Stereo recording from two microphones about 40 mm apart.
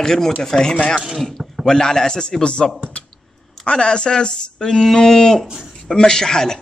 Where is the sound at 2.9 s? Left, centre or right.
Left.